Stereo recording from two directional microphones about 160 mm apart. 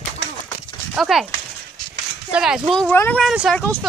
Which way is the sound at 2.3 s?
5° right (ahead or behind).